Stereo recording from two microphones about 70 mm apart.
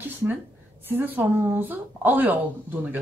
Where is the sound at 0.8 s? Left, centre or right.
Right.